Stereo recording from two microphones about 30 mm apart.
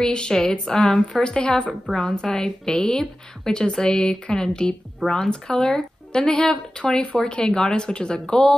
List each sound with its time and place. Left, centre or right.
0.0 s speech: left
0.3 s speech: left
3.0 s speech: centre; by 5.7 s left
5.7 s speech: left